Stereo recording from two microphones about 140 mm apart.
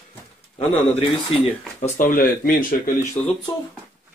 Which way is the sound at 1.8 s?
70° left (ahead or behind).